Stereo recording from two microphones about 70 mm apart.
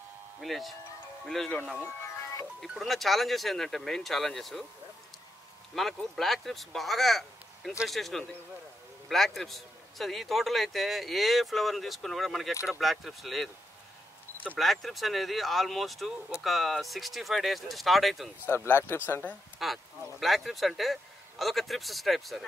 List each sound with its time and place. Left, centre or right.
0.4 s a man's voice: centre
2.8 s a man's voice: centre
5.8 s a man's voice: centre
14.3 s a sound: left
14.6 s a man's voice: centre
18.5 s speech: left
19.6 s a man's voice: centre